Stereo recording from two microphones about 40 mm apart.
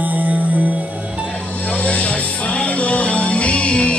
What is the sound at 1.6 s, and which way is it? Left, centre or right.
Music, left.